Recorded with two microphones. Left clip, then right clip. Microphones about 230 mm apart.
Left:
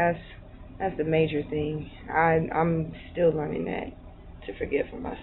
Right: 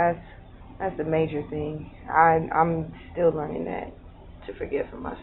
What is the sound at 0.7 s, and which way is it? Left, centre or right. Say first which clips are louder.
A woman's voice: even; centre.